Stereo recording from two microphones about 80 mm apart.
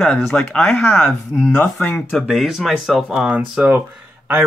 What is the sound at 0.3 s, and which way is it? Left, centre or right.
Speech, centre.